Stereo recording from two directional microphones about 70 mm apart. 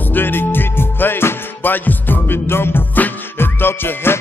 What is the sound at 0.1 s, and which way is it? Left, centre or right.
Music, left.